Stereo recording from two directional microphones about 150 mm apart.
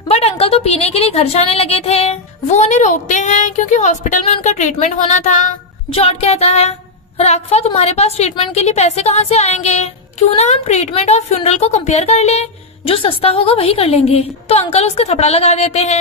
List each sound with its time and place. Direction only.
0.1 s a woman's voice: 40° left (ahead or behind)
5.9 s a woman's voice: 40° left (ahead or behind)